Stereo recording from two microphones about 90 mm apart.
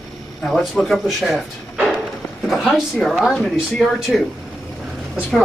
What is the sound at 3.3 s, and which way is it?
Speech, 5° left (ahead or behind).